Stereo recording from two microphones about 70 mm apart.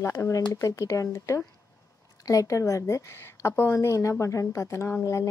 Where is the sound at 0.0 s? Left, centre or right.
Left.